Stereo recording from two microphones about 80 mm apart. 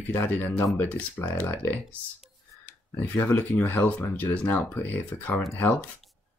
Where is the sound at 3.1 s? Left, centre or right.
Left.